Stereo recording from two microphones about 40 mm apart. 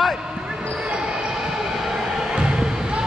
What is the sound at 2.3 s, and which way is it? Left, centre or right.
Basketball bounce, right.